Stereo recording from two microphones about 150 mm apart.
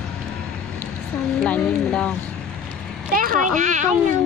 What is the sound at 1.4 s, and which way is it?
Speech, 5° left (ahead or behind).